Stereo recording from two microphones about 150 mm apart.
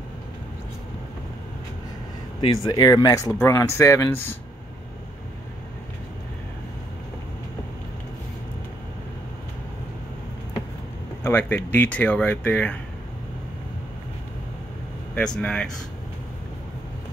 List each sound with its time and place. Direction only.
2.4 s speech: 30° left (ahead or behind)
11.2 s speech: 15° left (ahead or behind)
15.1 s speech: 5° left (ahead or behind)